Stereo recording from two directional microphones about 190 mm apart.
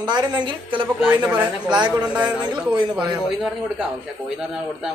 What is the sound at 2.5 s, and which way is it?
Speech, 20° right (ahead or behind).